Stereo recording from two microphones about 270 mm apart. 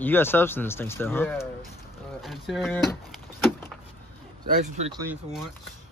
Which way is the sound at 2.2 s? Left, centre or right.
Centre.